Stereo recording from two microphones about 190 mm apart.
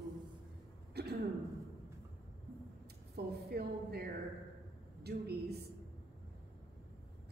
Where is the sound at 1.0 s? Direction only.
60° right (ahead or behind).